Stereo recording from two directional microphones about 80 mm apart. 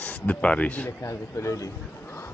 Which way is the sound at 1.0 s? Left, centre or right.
Left.